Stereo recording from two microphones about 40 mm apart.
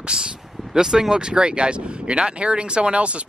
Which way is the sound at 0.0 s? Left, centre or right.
Right.